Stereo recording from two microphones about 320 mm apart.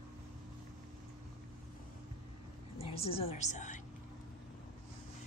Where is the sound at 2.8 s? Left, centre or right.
Centre.